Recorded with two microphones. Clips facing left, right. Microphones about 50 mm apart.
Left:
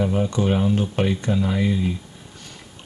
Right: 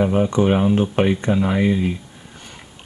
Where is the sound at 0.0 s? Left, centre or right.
Right.